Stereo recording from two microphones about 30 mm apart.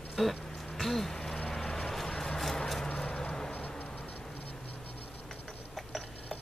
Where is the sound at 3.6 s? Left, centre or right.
Left.